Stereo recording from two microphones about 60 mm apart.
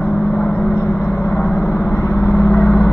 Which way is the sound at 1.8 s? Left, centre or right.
Left.